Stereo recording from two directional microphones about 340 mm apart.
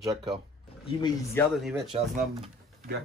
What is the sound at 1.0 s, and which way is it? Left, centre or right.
Speech, centre.